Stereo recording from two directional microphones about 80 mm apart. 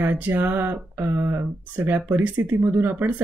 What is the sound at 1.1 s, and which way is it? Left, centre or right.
Speech, right.